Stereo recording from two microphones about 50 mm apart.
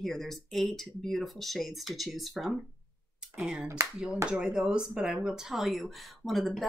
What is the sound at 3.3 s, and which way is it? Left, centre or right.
Speech, right.